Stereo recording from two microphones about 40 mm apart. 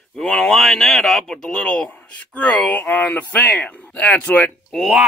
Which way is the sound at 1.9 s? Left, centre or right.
Left.